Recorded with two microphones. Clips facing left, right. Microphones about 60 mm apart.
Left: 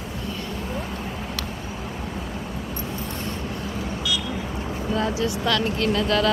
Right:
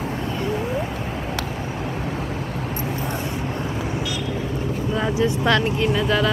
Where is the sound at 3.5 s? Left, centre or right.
Right.